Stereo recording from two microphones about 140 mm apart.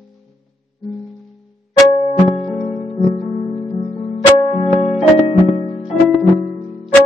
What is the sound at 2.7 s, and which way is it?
Music, 45° left (ahead or behind).